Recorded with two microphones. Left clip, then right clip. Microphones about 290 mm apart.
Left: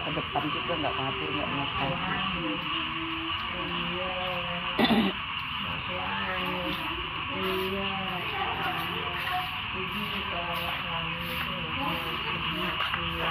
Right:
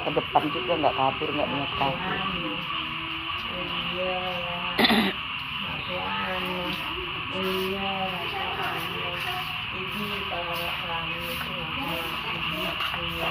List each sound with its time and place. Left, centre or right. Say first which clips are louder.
4.7 s throat clearing: right 4 dB; centre